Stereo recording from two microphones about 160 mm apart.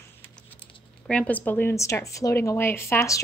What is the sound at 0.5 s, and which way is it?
A woman's voice, 5° left (ahead or behind).